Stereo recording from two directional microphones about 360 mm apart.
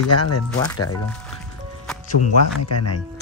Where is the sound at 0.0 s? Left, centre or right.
Left.